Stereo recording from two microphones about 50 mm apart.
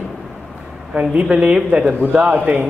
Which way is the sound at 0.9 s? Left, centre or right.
Right.